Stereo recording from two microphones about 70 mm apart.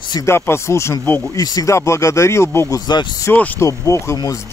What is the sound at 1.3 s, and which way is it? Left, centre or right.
Speech, left.